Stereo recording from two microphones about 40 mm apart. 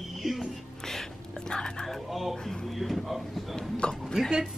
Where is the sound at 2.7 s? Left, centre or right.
Centre.